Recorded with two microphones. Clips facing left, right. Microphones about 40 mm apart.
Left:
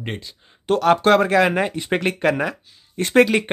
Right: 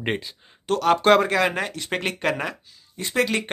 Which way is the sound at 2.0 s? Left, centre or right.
Centre.